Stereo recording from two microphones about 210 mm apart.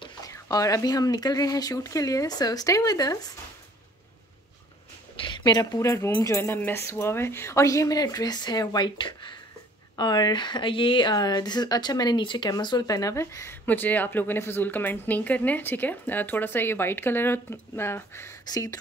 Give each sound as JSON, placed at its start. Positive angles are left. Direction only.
{"t": 0.0, "sound": "speech", "side_deg": 15}
{"t": 5.2, "sound": "speech", "side_deg": 20}